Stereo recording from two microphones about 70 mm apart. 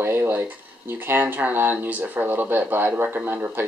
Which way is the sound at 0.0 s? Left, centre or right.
Right.